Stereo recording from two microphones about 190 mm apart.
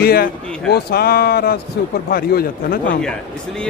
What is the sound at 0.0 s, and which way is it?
A man's voice, 55° left (ahead or behind).